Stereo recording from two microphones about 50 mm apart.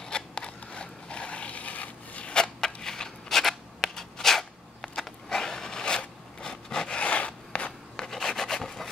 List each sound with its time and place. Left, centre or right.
0.0 s a sound: centre
2.3 s scissors: centre
7.0 s filing: left
7.9 s rub: centre